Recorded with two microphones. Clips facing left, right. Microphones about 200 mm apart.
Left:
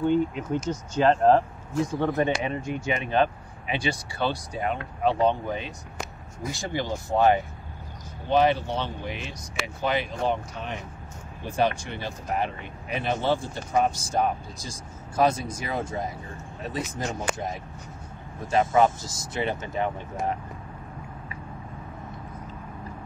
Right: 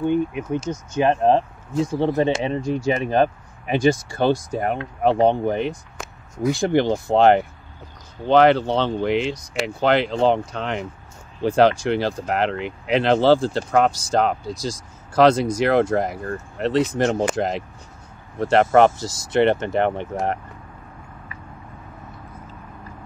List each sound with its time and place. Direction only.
0.0 s speech: 15° right (ahead or behind); by 9.6 s 80° right
9.8 s speech: 90° right
17.4 s speech: 90° right
18.4 s speech: 80° right